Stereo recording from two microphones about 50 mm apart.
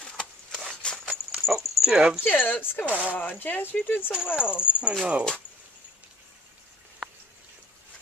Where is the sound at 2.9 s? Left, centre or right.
Right.